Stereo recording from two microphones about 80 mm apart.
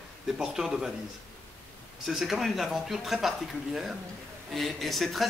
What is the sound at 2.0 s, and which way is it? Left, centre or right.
A man's voice, centre.